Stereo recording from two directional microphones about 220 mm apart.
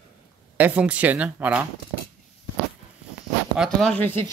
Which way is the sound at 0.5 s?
5° right (ahead or behind).